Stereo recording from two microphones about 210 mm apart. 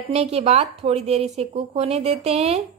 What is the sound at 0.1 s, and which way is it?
Speech, 30° right (ahead or behind).